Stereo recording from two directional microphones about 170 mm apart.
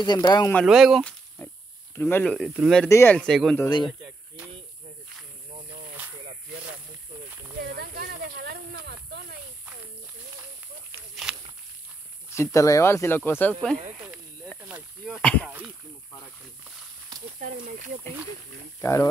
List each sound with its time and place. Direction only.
0.0 s speech: 25° left (ahead or behind)
0.7 s speech: centre (ahead or behind)
2.0 s speech: 10° left (ahead or behind); by 2.8 s 5° right (ahead or behind)
2.9 s speech: 15° left (ahead or behind)
7.6 s snake: 65° right (ahead or behind)
12.4 s speech: 20° left (ahead or behind)
13.9 s snake: 10° right (ahead or behind)
14.7 s a sound: 10° right (ahead or behind)
15.2 s speech: 5° left (ahead or behind)
17.4 s speech: 50° right (ahead or behind)
18.8 s speech: 15° left (ahead or behind)